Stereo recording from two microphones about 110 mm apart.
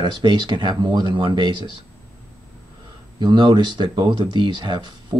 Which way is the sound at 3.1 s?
45° right (ahead or behind).